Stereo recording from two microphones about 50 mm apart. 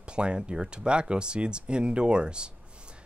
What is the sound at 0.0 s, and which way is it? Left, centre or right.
Speech, right.